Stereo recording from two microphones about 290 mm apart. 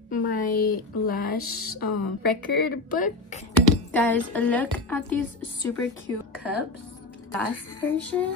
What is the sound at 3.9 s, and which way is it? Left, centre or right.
A woman's voice, centre.